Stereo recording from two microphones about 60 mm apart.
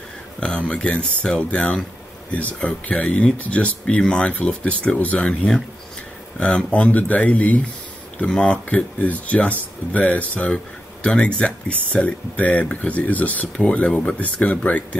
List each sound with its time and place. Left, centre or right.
0.4 s speech: centre